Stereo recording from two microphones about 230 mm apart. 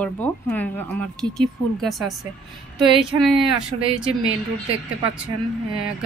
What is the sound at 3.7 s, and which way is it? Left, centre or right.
Speech, right.